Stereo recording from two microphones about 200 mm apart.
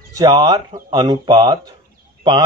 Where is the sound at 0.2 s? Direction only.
20° right (ahead or behind).